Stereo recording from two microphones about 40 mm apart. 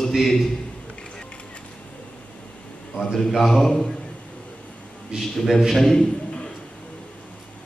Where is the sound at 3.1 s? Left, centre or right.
Centre.